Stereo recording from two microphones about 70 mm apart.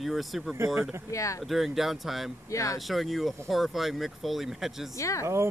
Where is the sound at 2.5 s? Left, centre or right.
Left.